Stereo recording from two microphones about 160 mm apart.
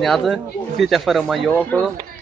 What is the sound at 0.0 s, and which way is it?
Speech, centre (ahead or behind).